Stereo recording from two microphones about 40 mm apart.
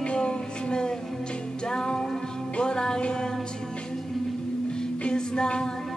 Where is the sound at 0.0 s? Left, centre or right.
Left.